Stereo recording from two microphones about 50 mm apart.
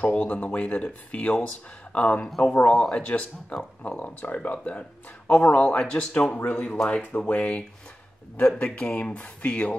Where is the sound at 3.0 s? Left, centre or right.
Left.